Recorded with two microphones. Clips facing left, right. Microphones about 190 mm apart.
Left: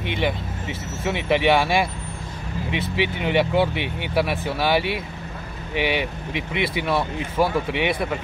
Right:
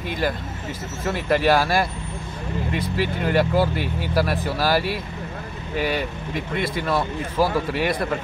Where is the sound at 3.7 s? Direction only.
65° left (ahead or behind).